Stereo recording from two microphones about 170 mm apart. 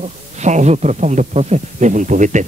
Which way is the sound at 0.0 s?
45° right (ahead or behind).